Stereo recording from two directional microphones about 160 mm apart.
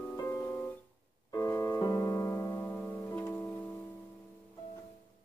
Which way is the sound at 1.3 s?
20° left (ahead or behind).